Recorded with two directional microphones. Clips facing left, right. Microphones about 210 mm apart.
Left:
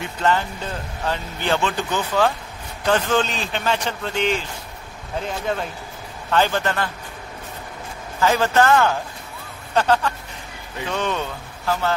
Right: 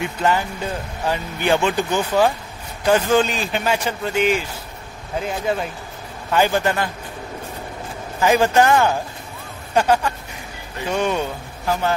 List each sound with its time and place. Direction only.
0.0 s speech: 10° right (ahead or behind)
8.2 s speech: 15° right (ahead or behind)